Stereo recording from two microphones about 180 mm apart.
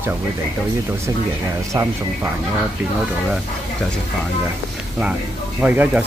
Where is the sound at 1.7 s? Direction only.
15° right (ahead or behind).